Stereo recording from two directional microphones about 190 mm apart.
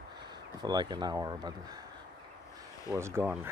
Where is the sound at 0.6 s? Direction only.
20° right (ahead or behind).